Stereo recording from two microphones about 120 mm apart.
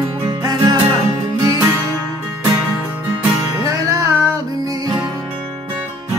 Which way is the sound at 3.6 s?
30° right (ahead or behind).